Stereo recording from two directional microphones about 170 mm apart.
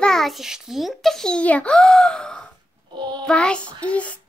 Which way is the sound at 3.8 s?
10° left (ahead or behind).